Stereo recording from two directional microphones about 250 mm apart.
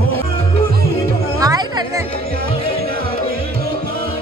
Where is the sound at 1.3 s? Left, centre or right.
Centre.